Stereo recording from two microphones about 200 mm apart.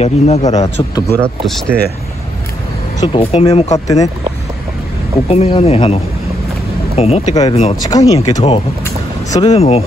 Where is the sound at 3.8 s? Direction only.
15° left (ahead or behind).